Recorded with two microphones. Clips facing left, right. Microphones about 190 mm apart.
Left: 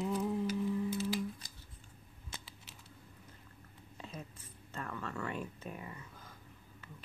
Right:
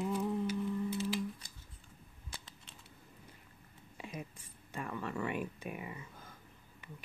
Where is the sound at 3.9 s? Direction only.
10° right (ahead or behind).